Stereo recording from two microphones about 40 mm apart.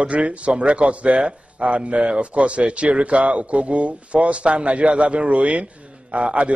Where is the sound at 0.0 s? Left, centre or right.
Right.